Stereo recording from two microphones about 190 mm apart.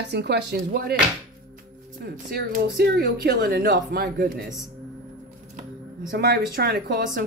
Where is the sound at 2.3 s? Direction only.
55° right (ahead or behind).